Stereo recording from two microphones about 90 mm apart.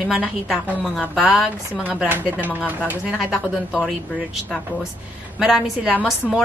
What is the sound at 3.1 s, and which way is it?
Speech, 5° right (ahead or behind).